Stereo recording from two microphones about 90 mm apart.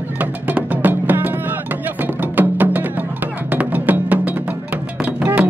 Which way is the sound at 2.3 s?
20° right (ahead or behind).